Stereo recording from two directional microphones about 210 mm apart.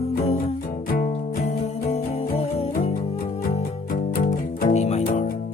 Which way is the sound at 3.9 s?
45° left (ahead or behind).